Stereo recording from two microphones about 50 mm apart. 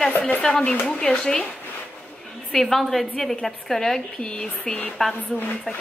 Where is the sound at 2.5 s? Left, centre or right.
Centre.